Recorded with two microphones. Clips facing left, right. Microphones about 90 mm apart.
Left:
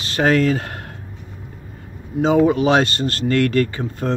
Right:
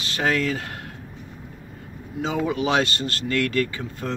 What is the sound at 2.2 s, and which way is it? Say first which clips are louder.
Speech: left 9 dB; 40° left (ahead or behind).